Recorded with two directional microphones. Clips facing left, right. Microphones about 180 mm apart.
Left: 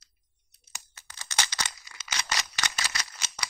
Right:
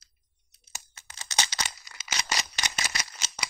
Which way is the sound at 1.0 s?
20° right (ahead or behind).